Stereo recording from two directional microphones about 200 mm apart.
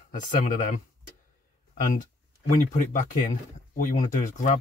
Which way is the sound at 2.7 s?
40° left (ahead or behind).